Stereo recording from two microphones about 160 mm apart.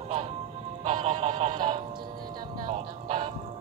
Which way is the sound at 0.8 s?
45° right (ahead or behind).